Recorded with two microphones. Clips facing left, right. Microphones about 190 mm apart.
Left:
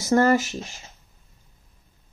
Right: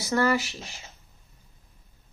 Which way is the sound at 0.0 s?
45° left (ahead or behind).